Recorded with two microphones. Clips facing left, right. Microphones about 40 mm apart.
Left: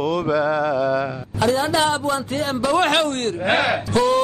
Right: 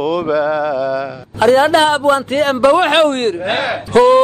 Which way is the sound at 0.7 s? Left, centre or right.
Centre.